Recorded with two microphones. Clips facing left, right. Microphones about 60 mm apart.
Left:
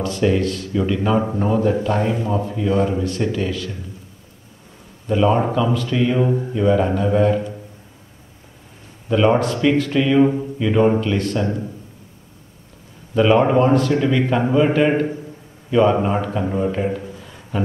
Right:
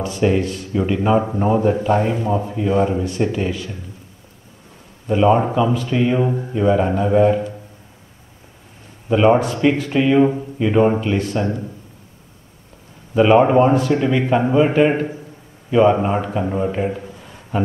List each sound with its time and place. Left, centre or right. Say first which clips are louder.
0.0 s speech: even; centre
1.2 s a man's voice: right 1 dB; centre
1.5 s a man's voice: right 3 dB; centre
2.0 s a man's voice: right 2 dB; centre
5.0 s a man's voice: right 2 dB; centre
6.2 s a man's voice: even; centre
9.1 s a man's voice: right 2 dB; centre
13.1 s a man's voice: right 2 dB; centre